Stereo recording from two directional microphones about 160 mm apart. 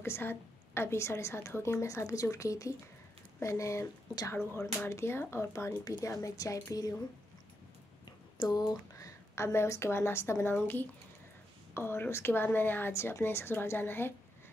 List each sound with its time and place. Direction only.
0.0 s a woman's voice: 15° left (ahead or behind)
8.4 s a woman's voice: 25° left (ahead or behind)